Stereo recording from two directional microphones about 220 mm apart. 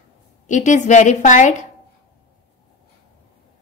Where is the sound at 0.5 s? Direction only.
35° left (ahead or behind).